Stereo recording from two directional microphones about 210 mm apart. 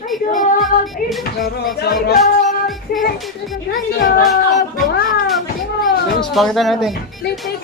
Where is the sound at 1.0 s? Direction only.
40° left (ahead or behind).